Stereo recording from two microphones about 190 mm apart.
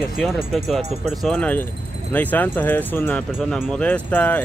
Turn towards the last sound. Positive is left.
turn(degrees=10)  # may be behind; listen again after turning